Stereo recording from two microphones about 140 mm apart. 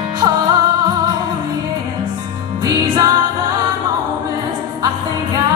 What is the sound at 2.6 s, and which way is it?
Music, 30° right (ahead or behind).